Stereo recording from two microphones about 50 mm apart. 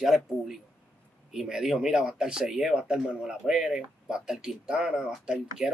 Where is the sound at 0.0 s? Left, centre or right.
Centre.